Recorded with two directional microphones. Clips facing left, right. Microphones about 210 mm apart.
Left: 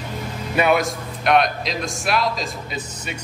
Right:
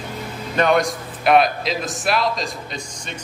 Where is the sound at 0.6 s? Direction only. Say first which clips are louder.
Right 1 dB; 5° left (ahead or behind).